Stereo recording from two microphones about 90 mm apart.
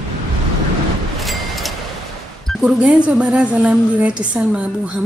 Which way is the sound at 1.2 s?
Centre (ahead or behind).